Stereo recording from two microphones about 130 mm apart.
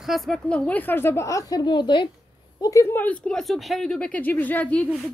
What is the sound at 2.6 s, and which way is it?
A woman's voice, 25° left (ahead or behind).